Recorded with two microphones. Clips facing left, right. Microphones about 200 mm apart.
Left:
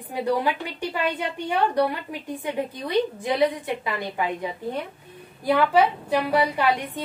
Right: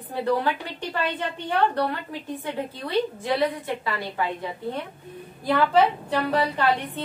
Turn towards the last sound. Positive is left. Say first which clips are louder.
# even
turn(degrees=10)  # may be behind; listen again after turning